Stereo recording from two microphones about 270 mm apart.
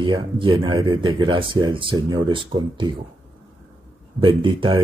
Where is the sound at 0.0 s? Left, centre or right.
Centre.